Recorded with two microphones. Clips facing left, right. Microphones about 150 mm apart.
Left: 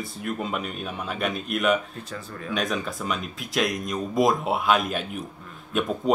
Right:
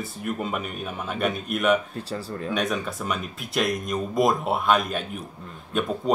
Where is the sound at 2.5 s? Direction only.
Centre (ahead or behind).